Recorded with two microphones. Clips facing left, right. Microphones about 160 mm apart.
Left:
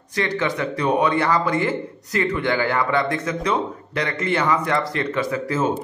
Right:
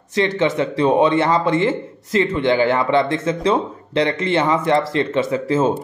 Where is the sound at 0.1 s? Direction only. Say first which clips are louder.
Right 5 dB; 25° right (ahead or behind).